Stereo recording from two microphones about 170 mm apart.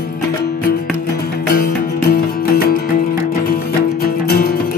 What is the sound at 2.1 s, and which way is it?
Music, 55° left (ahead or behind).